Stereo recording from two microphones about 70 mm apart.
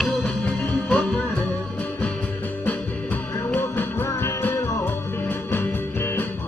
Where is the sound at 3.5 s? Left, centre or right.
Left.